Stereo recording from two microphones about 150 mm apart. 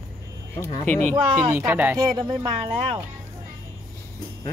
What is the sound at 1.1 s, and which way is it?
Speech, 20° right (ahead or behind).